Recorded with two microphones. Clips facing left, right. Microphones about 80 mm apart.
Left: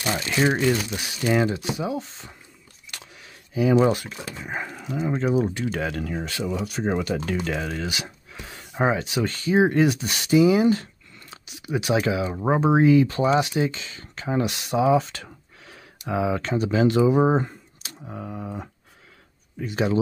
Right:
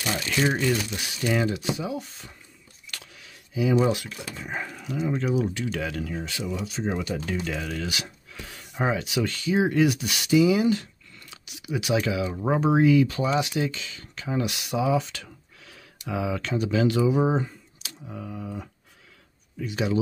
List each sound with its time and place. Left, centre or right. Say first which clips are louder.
0.0 s speech: left 3 dB; left
2.9 s a sound: left 1 dB; left
3.8 s speech: left 3 dB; left
4.4 s speech: left 1 dB; centre; by 7.6 s left
7.6 s speech: left 2 dB; left
17.8 s a sound: left 2 dB; left
19.6 s speech: left 3 dB; left